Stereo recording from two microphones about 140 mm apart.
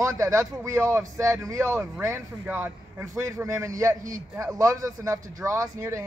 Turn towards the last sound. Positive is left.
turn(degrees=-20)  # may be behind; listen again after turning